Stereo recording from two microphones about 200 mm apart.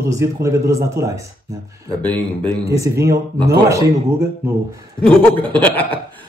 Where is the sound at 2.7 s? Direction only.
15° right (ahead or behind).